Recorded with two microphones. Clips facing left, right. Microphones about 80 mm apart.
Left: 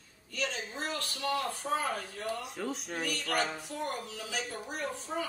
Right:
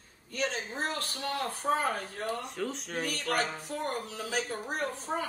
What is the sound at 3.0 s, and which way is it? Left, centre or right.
Speech, right.